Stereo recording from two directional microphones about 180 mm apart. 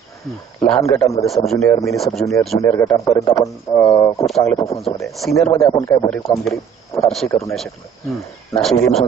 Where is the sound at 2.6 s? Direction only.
15° left (ahead or behind).